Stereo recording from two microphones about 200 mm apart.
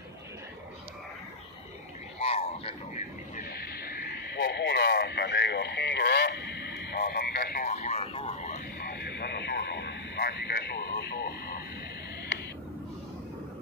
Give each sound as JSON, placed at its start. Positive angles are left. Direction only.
{"t": 2.1, "sound": "a sound", "side_deg": 30}
{"t": 3.3, "sound": "speech", "side_deg": 50}
{"t": 7.6, "sound": "speech", "side_deg": 35}
{"t": 8.8, "sound": "radio", "side_deg": 60}